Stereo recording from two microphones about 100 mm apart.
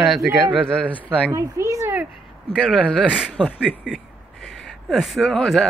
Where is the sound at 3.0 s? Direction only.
10° right (ahead or behind).